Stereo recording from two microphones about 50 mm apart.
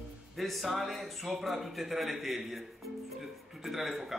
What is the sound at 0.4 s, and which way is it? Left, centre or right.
Speech, centre.